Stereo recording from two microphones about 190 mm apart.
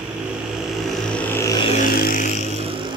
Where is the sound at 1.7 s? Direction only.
45° left (ahead or behind).